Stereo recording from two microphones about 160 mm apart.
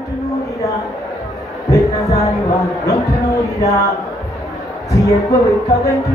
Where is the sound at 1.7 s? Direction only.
20° left (ahead or behind).